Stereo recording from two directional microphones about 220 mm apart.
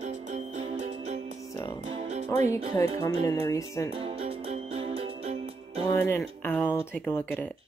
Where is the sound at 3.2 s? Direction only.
15° left (ahead or behind).